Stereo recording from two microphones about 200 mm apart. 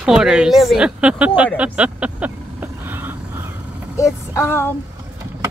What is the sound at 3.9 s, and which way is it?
Child singing, 15° left (ahead or behind).